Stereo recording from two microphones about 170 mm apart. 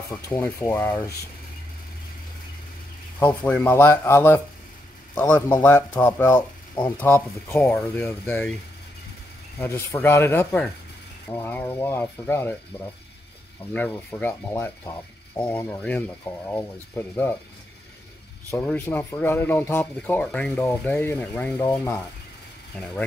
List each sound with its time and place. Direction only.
0.3 s speech: 15° left (ahead or behind)
3.2 s speech: 10° left (ahead or behind)
9.6 s speech: 15° left (ahead or behind)
13.7 s speech: 10° left (ahead or behind)
18.5 s speech: 10° left (ahead or behind)